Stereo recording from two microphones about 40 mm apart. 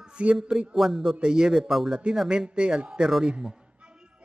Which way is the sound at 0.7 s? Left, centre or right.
Centre.